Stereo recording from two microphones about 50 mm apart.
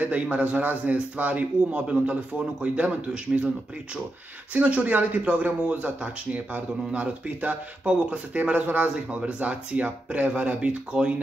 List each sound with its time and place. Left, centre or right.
0.0 s speech: right
4.6 s speech: right